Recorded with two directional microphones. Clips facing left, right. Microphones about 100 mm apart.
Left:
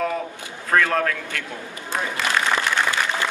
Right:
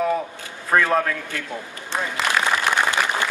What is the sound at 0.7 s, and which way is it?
Speech, 15° right (ahead or behind).